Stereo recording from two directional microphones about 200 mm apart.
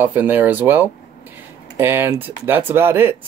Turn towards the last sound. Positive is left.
turn(degrees=-10)  # may be behind; listen again after turning